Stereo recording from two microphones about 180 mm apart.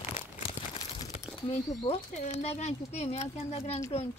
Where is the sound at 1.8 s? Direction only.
35° left (ahead or behind).